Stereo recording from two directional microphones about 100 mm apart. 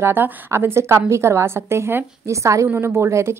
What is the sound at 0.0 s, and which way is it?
A woman's voice, 25° right (ahead or behind).